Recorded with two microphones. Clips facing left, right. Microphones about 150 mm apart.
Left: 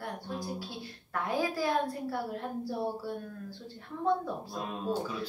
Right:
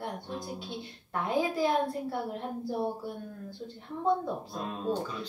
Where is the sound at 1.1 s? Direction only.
20° right (ahead or behind).